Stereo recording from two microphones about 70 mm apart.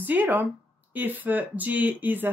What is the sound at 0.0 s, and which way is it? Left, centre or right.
Speech, right.